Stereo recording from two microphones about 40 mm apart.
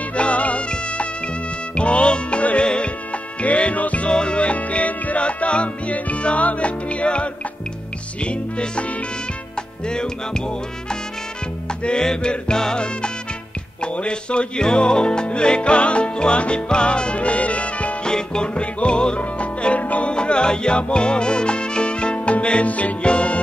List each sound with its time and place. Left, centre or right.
0.1 s music: left
4.1 s music: left
9.8 s music: centre
11.8 s music: left
18.0 s music: centre; by 20.1 s left
20.1 s music: left